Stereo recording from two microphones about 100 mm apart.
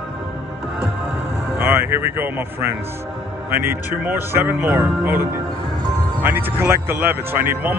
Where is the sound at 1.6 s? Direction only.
25° right (ahead or behind).